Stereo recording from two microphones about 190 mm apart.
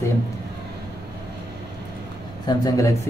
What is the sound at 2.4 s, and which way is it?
Speech, 20° left (ahead or behind).